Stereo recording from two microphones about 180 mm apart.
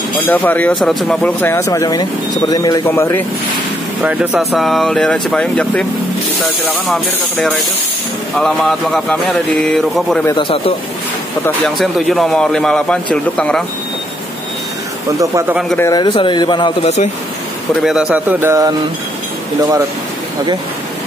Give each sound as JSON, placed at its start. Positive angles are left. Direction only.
{"t": 0.3, "sound": "speech", "side_deg": 10}
{"t": 4.0, "sound": "a man's voice", "side_deg": -5}
{"t": 10.2, "sound": "speech", "side_deg": 25}
{"t": 11.4, "sound": "a man's voice", "side_deg": 0}
{"t": 15.0, "sound": "speech", "side_deg": -20}
{"t": 15.8, "sound": "speech", "side_deg": 25}
{"t": 17.8, "sound": "speech", "side_deg": -5}